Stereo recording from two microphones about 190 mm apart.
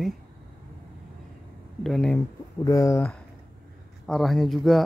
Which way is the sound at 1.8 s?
5° left (ahead or behind).